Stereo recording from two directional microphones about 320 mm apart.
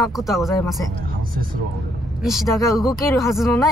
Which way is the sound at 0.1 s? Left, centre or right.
Centre.